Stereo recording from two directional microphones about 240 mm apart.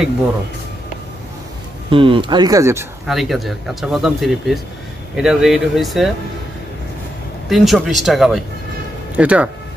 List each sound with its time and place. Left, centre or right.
1.9 s speech: right
3.1 s speech: centre
7.4 s speech: centre